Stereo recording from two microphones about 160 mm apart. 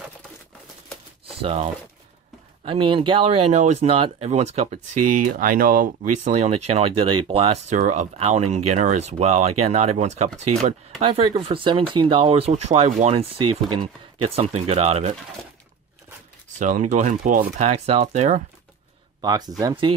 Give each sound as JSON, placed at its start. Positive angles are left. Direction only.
{"t": 1.2, "sound": "a sound", "side_deg": -40}
{"t": 2.6, "sound": "speech", "side_deg": -30}
{"t": 5.1, "sound": "speech", "side_deg": -55}
{"t": 11.0, "sound": "speech", "side_deg": -35}
{"t": 16.5, "sound": "speech", "side_deg": -50}
{"t": 19.2, "sound": "speech", "side_deg": -25}